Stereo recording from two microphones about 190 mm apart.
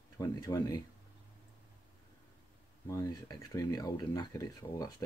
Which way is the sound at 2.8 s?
20° left (ahead or behind).